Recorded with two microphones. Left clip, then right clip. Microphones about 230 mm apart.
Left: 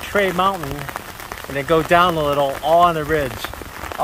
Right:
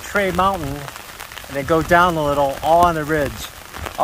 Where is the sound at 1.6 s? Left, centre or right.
Right.